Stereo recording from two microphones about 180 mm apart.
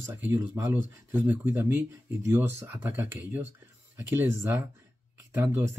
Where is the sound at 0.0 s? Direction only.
10° right (ahead or behind).